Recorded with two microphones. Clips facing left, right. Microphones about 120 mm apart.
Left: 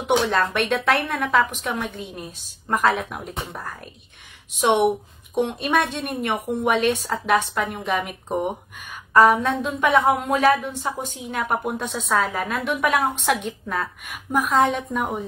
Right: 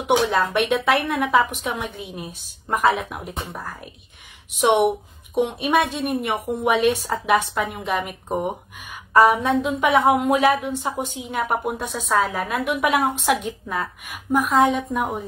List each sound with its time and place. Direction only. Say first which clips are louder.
0.1 s a woman's voice: right 1 dB; 5° right (ahead or behind)
4.6 s a woman's voice: right 1 dB; 15° right (ahead or behind)
9.1 s a woman's voice: even; 15° right (ahead or behind)
13.2 s a woman's voice: right 1 dB; centre (ahead or behind)